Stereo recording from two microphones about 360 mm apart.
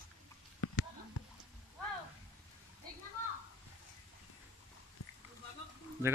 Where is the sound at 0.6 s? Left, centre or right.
Left.